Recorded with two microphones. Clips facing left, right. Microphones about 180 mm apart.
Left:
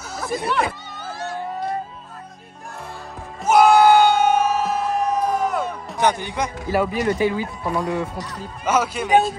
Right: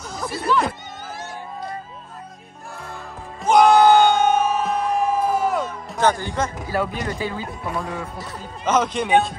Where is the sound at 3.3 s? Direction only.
5° left (ahead or behind).